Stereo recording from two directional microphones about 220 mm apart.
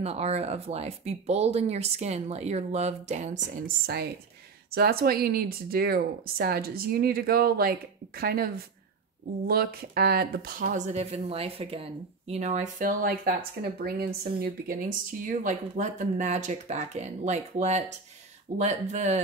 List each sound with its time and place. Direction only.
0.0 s speech: 30° right (ahead or behind)